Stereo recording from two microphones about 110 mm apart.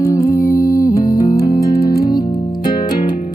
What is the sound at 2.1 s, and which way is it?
Music, 40° left (ahead or behind).